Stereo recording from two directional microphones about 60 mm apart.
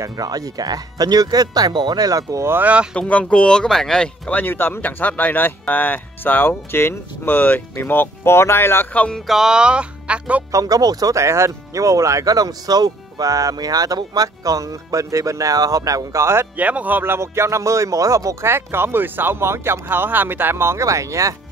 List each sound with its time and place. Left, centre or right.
0.0 s speech: right
2.6 s speech: right
2.9 s speech: left
4.3 s speech: left
9.3 s speech: centre
10.5 s speech: right
11.2 s speech: right
16.5 s speech: right
17.0 s speech: right